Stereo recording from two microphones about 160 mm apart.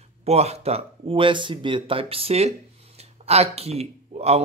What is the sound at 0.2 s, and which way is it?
Speech, 40° right (ahead or behind).